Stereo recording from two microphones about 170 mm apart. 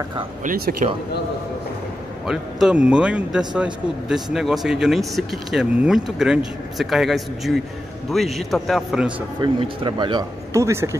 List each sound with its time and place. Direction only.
0.4 s speech: 55° right (ahead or behind)
2.2 s speech: 5° right (ahead or behind)
9.4 s speech: 25° right (ahead or behind)